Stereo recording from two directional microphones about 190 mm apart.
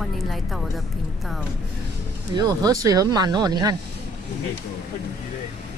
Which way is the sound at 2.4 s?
20° right (ahead or behind).